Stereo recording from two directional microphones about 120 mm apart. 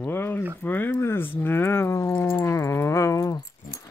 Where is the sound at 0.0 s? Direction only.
15° left (ahead or behind).